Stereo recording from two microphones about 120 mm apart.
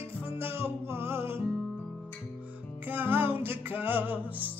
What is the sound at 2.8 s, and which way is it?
Music, 15° right (ahead or behind).